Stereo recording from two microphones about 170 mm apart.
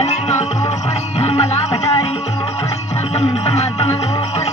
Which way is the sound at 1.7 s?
20° left (ahead or behind).